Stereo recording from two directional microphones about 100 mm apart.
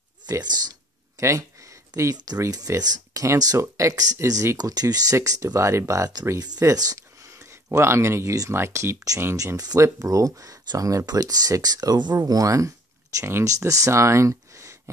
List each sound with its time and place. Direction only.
0.3 s speech: 45° right (ahead or behind)
7.7 s speech: 25° right (ahead or behind)
9.6 s speech: 40° right (ahead or behind)